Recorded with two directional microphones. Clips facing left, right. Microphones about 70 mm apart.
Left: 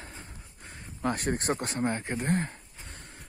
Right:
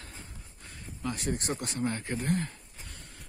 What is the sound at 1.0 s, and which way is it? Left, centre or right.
Speech, left.